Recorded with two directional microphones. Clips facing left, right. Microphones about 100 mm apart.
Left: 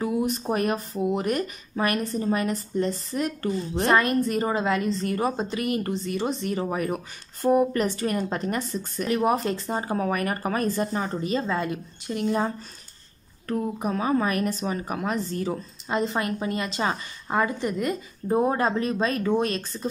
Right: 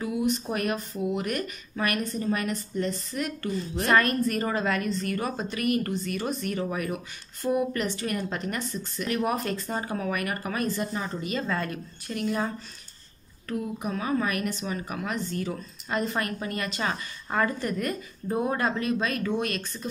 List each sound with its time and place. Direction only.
0.0 s speech: 30° left (ahead or behind)
13.5 s speech: 35° left (ahead or behind); by 18.4 s 20° left (ahead or behind)
18.4 s speech: 30° left (ahead or behind)